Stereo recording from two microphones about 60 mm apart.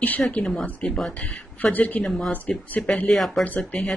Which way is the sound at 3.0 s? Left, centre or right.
Centre.